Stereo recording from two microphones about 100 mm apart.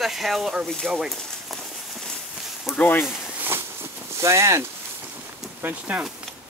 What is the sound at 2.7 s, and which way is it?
Speech, 20° left (ahead or behind).